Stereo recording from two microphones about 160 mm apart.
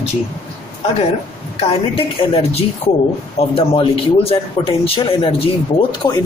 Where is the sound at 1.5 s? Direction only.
35° left (ahead or behind).